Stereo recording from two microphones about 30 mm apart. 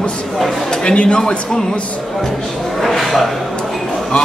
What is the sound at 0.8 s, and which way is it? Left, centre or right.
Speech, left.